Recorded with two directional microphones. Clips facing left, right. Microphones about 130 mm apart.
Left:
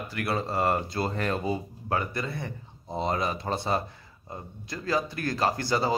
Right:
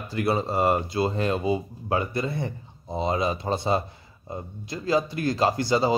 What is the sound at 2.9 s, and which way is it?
Speech, 15° right (ahead or behind).